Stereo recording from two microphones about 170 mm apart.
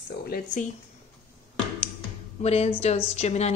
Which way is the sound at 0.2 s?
60° left (ahead or behind).